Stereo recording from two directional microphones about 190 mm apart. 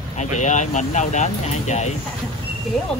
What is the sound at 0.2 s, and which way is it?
Speech, 40° left (ahead or behind).